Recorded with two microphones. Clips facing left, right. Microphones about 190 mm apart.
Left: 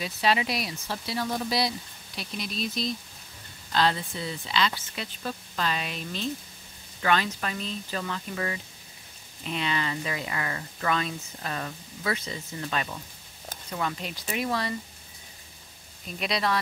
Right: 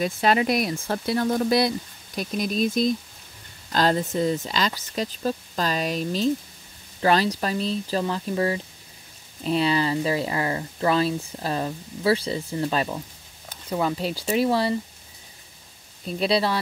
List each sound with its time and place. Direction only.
0.0 s speech: 50° right (ahead or behind); by 14.8 s 30° right (ahead or behind)
16.1 s speech: 30° right (ahead or behind)